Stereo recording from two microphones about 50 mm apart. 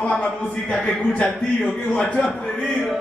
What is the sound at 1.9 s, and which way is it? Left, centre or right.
Speech, left.